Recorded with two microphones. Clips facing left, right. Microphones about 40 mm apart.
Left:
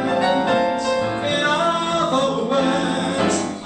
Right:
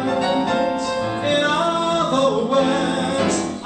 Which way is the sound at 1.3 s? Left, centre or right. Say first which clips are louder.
Right 2 dB; left.